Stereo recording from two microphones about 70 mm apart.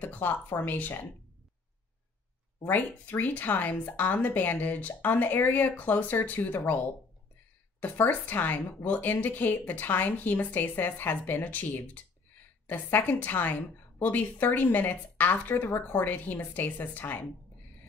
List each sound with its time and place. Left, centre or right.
0.0 s a woman's voice: left
2.7 s a woman's voice: left
7.8 s a woman's voice: left